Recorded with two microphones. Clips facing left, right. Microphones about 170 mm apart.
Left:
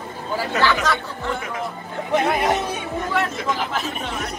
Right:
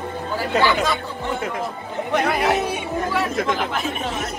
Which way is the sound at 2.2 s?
Centre (ahead or behind).